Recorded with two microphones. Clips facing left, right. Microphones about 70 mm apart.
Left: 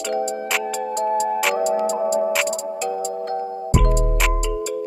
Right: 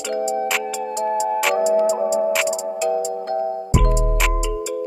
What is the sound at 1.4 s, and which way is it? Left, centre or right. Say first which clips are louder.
Music: right 3 dB; centre.